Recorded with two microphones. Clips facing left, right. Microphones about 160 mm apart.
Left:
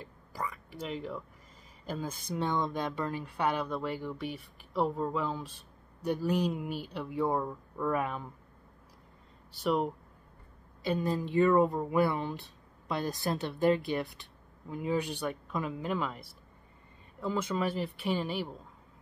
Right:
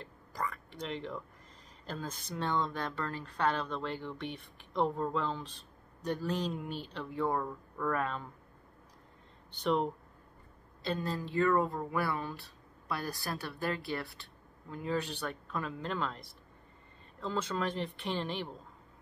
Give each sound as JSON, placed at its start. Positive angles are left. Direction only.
{"t": 0.0, "sound": "speech", "side_deg": 10}
{"t": 9.5, "sound": "speech", "side_deg": 5}